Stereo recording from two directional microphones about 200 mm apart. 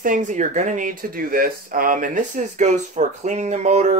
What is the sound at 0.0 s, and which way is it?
Speech, 40° right (ahead or behind).